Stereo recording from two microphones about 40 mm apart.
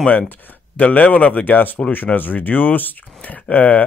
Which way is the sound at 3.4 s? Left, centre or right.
Left.